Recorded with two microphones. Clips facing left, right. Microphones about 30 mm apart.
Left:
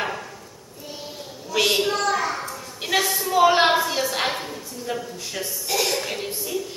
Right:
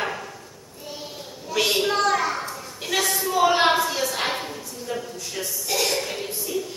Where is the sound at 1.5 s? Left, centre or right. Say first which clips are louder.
Left 2 dB; centre.